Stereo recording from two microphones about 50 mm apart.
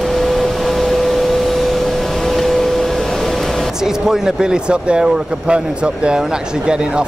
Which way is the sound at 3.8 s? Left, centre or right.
Centre.